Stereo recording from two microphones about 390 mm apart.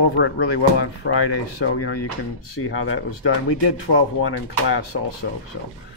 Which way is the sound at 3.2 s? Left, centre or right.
Left.